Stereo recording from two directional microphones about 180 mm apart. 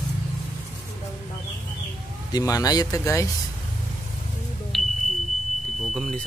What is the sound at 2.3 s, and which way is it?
Speech, 20° left (ahead or behind).